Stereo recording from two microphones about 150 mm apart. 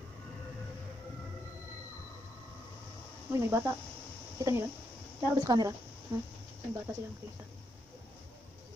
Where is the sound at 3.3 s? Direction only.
15° right (ahead or behind).